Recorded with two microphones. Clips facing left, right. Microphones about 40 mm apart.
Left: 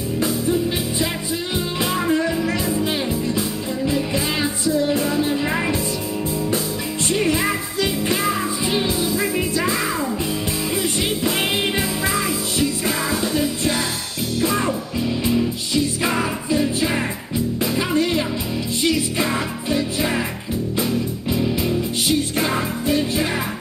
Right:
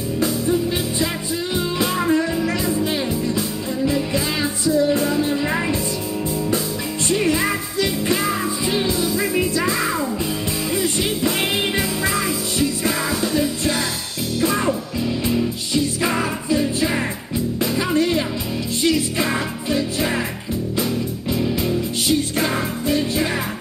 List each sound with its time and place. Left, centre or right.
1.8 s music: centre
4.1 s music: left
12.8 s music: centre
16.0 s music: centre
17.6 s music: centre
21.4 s music: centre